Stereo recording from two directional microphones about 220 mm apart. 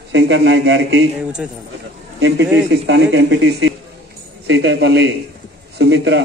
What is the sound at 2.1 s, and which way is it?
A man's voice, 55° right (ahead or behind).